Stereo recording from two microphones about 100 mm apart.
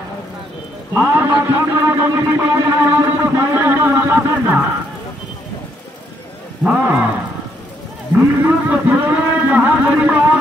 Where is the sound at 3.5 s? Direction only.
20° right (ahead or behind).